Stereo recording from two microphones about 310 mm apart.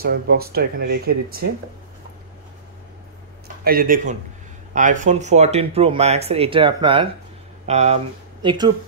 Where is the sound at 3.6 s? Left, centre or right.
Right.